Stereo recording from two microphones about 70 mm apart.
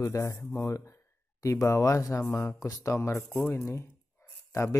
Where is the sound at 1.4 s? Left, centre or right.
Left.